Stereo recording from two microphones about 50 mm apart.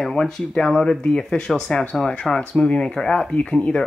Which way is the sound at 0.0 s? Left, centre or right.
Centre.